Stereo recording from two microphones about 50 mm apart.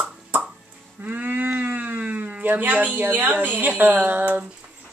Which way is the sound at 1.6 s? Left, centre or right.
Right.